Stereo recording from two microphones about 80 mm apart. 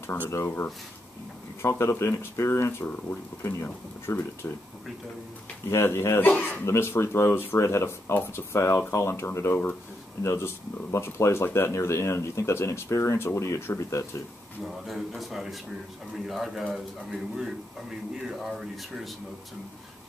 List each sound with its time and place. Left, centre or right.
0.0 s speech: left
5.7 s speech: left
14.9 s a man's voice: centre